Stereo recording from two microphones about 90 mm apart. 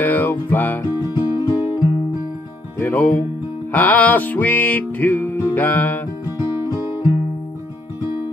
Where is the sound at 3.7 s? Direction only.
20° left (ahead or behind).